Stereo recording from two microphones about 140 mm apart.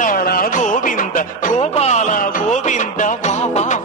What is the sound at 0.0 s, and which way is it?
Music, 90° left.